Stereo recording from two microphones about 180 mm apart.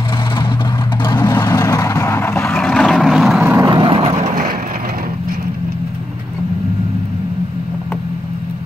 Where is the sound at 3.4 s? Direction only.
15° right (ahead or behind).